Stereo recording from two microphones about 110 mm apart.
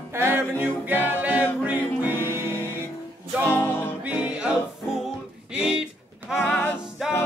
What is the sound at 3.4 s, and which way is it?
Music, 20° left (ahead or behind).